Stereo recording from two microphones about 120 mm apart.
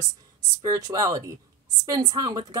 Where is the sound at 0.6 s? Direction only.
30° right (ahead or behind).